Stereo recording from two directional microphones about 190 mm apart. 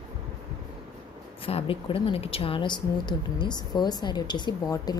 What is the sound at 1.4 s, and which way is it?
A woman's voice, 30° left (ahead or behind).